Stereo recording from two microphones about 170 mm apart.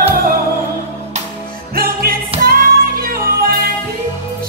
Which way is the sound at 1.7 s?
60° right (ahead or behind).